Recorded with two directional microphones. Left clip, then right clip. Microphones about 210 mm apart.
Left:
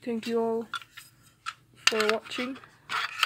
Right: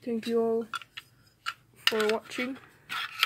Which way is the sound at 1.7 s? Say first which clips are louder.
Left 2 dB; centre (ahead or behind).